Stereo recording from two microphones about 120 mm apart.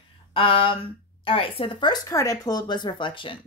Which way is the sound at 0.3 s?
50° left (ahead or behind).